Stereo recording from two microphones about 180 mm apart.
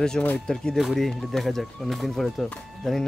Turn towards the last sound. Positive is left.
turn(degrees=0)  # may be behind; listen again after turning